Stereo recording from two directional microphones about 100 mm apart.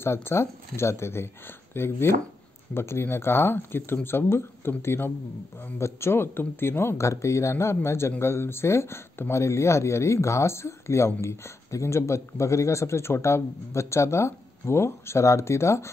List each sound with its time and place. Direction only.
0.0 s speech: 25° left (ahead or behind)